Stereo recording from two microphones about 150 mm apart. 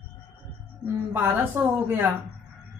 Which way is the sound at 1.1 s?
15° right (ahead or behind).